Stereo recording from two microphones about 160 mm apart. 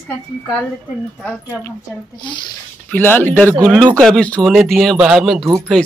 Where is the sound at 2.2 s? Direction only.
30° left (ahead or behind).